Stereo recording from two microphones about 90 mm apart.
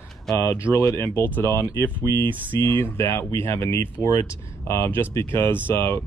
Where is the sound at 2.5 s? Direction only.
25° left (ahead or behind).